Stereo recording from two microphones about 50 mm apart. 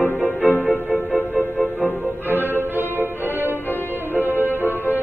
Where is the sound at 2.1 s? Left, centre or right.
Right.